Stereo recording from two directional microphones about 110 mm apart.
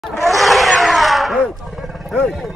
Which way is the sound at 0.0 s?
Centre (ahead or behind).